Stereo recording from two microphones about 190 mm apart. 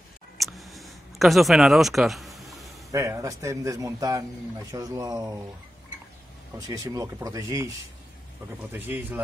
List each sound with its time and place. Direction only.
0.4 s a sound: centre (ahead or behind)
2.9 s a man's voice: 15° right (ahead or behind)
6.7 s a man's voice: 20° right (ahead or behind)
8.7 s a man's voice: 10° right (ahead or behind)